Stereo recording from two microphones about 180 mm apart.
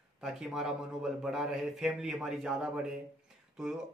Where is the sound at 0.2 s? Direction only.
5° right (ahead or behind).